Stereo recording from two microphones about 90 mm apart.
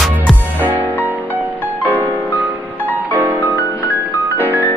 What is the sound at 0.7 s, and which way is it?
Music, 20° right (ahead or behind).